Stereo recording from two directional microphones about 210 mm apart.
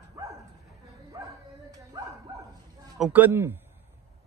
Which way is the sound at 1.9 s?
15° right (ahead or behind).